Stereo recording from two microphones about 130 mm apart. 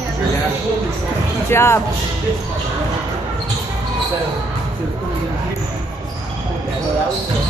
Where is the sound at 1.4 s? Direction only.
20° left (ahead or behind).